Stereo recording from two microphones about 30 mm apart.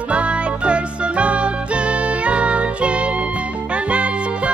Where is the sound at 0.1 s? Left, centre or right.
Right.